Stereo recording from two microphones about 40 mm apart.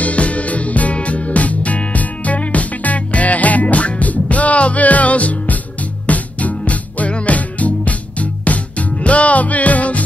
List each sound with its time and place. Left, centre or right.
0.0 s music: left